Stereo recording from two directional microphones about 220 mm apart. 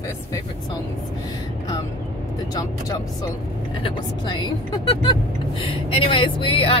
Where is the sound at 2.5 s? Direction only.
15° left (ahead or behind).